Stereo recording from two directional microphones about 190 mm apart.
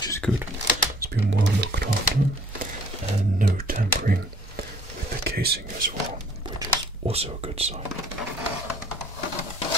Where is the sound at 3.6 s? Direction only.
50° right (ahead or behind).